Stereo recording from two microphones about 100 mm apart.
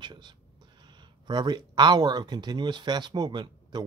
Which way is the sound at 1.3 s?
45° right (ahead or behind).